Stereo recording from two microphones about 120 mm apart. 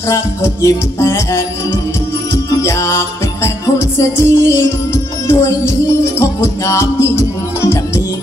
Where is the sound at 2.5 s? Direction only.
25° left (ahead or behind).